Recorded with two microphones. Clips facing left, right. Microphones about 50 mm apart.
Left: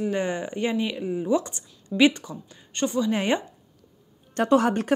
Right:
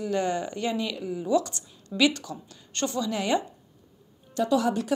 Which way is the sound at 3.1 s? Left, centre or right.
Left.